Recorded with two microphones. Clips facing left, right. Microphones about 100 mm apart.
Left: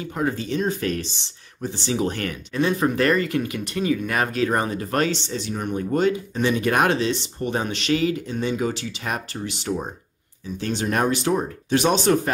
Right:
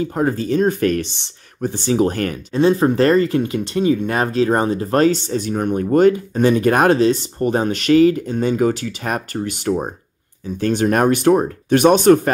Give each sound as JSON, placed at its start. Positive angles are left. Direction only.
{"t": 0.0, "sound": "speech", "side_deg": -40}